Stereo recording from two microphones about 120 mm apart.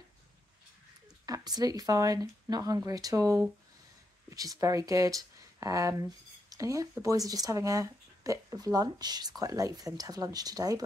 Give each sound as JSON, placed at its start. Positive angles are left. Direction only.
{"t": 1.2, "sound": "speech", "side_deg": -30}